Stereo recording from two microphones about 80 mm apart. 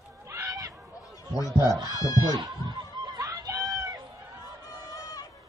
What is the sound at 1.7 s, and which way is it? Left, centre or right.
Speech, right.